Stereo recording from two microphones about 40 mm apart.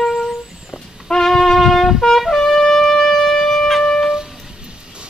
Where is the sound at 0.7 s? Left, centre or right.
Centre.